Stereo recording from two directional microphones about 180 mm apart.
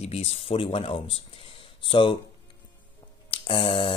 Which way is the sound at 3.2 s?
30° left (ahead or behind).